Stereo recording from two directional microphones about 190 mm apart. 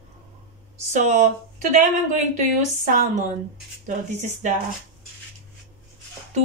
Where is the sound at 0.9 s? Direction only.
40° right (ahead or behind).